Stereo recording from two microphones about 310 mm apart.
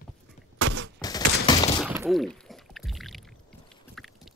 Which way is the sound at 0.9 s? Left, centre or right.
Centre.